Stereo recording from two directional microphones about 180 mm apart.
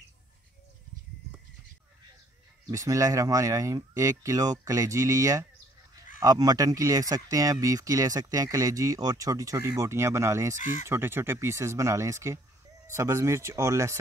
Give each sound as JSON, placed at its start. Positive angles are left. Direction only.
{"t": 2.7, "sound": "speech", "side_deg": -20}
{"t": 10.6, "sound": "speech", "side_deg": 45}
{"t": 10.9, "sound": "speech", "side_deg": -15}